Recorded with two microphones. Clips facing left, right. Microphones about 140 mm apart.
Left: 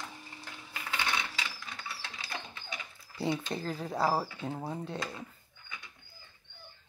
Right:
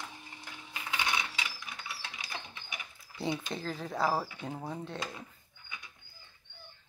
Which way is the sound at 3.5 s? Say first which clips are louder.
Left 2 dB; 5° left (ahead or behind).